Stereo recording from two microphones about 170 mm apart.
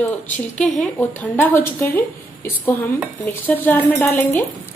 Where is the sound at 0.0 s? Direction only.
5° left (ahead or behind).